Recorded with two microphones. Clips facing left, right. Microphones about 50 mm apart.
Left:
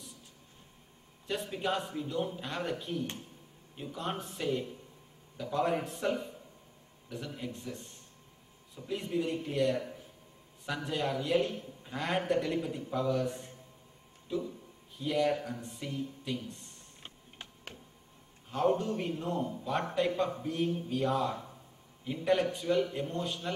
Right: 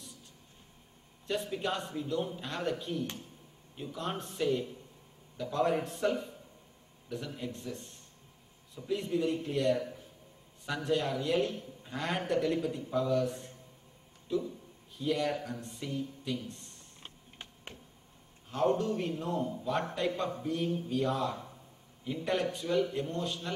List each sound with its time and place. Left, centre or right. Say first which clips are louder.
1.2 s a man's voice: right 1 dB; centre
3.0 s speech: even; left
3.7 s a man's voice: even; centre
15.0 s a man's voice: left 2 dB; centre
16.4 s a sound: even; centre
18.5 s a man's voice: even; centre
20.3 s a sound: left 1 dB; centre
20.9 s a man's voice: even; centre